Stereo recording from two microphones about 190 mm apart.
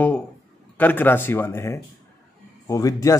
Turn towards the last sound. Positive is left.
turn(degrees=15)  # may be behind; listen again after turning